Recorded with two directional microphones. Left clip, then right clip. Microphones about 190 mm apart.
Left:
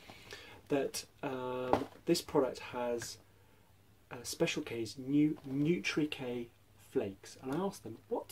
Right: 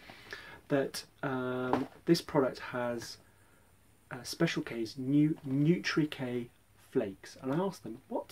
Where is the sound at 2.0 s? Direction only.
10° right (ahead or behind).